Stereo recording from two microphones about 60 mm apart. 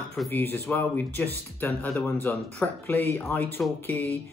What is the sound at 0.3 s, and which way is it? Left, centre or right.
Speech, left.